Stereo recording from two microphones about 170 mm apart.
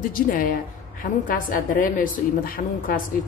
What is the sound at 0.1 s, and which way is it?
A woman's voice, 55° left (ahead or behind).